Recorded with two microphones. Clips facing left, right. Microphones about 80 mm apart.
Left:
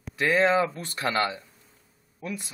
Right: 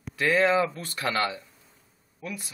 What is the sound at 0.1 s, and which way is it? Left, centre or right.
Speech, left.